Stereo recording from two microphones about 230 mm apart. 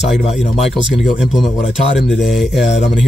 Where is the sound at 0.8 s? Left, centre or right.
Centre.